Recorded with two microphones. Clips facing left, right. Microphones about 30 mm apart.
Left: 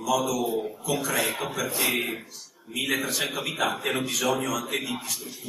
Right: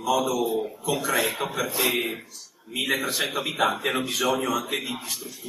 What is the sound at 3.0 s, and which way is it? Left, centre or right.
Speech, centre.